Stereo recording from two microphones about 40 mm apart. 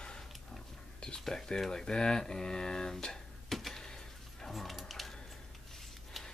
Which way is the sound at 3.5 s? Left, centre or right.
Centre.